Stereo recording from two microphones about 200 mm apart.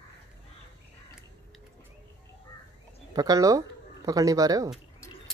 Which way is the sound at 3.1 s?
20° right (ahead or behind).